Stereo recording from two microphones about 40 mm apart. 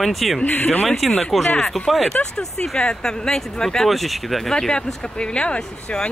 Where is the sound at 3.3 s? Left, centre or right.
Centre.